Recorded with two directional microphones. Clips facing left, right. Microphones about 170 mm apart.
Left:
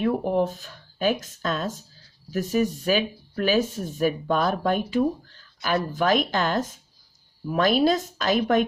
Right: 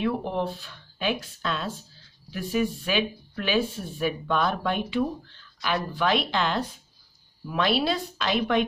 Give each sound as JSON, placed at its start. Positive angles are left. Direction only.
{"t": 0.0, "sound": "speech", "side_deg": 45}